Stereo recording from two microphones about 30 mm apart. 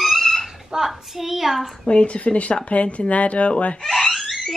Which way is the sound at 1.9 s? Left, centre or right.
Left.